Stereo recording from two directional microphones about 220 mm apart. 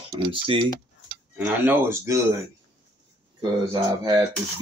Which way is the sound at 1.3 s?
10° right (ahead or behind).